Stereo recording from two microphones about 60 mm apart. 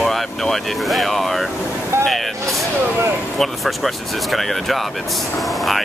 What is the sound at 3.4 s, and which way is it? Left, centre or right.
Speech, centre.